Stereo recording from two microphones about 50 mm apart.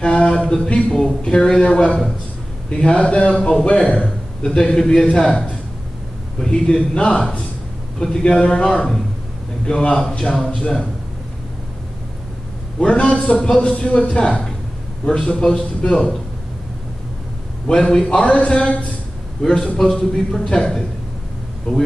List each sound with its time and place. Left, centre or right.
0.0 s a man's voice: centre
12.8 s speech: left
15.0 s a man's voice: centre
17.6 s a man's voice: centre
19.4 s a man's voice: centre